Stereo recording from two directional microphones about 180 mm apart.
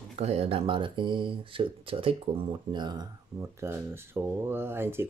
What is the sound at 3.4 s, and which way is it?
Speech, 15° right (ahead or behind).